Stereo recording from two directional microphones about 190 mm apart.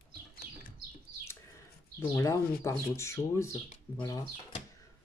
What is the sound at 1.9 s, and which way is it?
Speech, 15° left (ahead or behind).